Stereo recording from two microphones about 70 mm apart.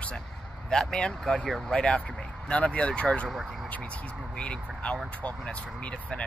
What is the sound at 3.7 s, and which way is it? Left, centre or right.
Speech, left.